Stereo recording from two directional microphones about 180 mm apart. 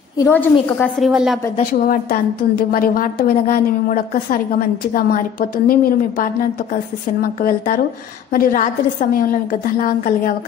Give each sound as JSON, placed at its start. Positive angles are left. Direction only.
{"t": 0.2, "sound": "a woman's voice", "side_deg": 10}
{"t": 1.6, "sound": "a woman's voice", "side_deg": 50}